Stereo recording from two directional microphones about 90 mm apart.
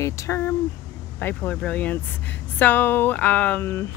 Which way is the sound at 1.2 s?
20° left (ahead or behind).